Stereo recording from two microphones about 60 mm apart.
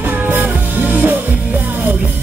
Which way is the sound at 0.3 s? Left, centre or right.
Right.